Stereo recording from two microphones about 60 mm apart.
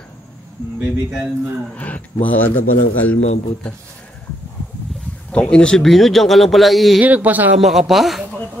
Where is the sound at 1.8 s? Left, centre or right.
Left.